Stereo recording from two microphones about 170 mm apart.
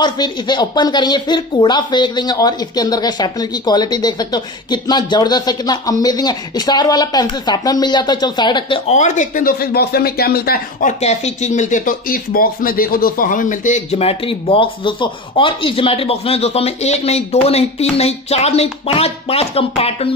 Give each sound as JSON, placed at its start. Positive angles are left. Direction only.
{"t": 0.0, "sound": "speech", "side_deg": 25}
{"t": 8.9, "sound": "speech", "side_deg": 45}